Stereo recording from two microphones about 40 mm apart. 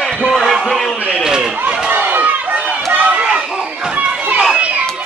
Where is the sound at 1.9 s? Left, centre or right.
Right.